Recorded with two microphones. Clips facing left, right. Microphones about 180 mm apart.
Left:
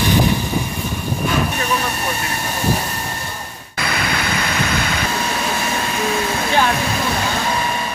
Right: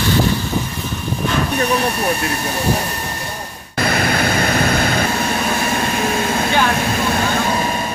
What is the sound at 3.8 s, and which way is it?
Vehicle, 45° right (ahead or behind).